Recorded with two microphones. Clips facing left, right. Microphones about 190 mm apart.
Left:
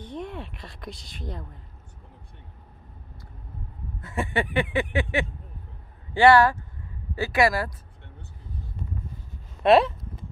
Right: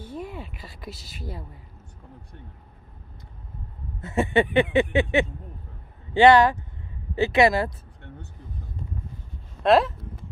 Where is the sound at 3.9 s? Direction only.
25° right (ahead or behind).